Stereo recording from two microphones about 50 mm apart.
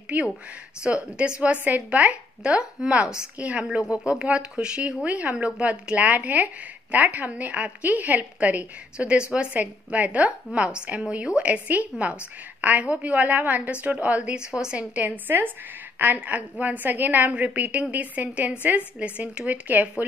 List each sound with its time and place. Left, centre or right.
0.1 s speech: right
0.8 s a woman's voice: right
2.8 s a woman's voice: centre
14.3 s a woman's voice: centre
15.2 s a woman's voice: right